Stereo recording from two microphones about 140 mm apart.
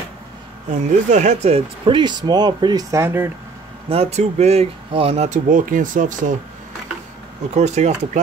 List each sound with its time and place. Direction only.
0.7 s speech: 55° right (ahead or behind)
1.9 s speech: 35° right (ahead or behind); by 3.3 s 20° right (ahead or behind)
3.9 s speech: 50° right (ahead or behind)
5.5 s speech: 70° right (ahead or behind)
7.5 s speech: 55° right (ahead or behind)